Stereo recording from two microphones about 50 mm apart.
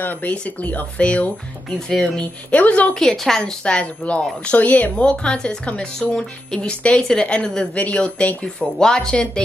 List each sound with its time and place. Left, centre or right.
0.0 s speech: left
1.7 s a woman's voice: centre
2.5 s speech: left
2.9 s a woman's voice: centre
3.6 s speech: left
5.0 s a woman's voice: centre